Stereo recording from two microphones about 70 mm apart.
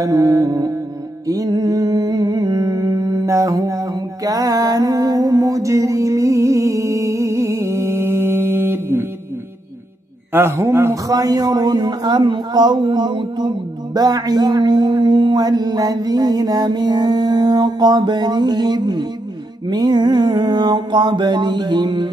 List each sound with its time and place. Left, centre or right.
0.0 s music: right
10.3 s a man's voice: right
11.1 s a man's voice: right
13.9 s speech: right